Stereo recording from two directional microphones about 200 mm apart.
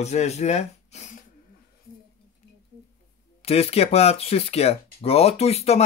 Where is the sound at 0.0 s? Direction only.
35° left (ahead or behind).